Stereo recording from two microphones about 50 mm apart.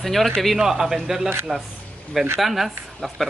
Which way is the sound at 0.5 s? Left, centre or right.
Centre.